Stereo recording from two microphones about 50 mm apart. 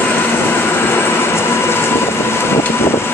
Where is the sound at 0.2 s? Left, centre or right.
Left.